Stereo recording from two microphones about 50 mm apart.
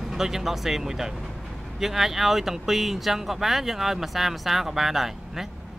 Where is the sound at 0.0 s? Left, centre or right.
Centre.